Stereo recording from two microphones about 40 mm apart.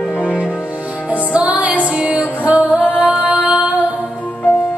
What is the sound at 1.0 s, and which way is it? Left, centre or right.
Music, right.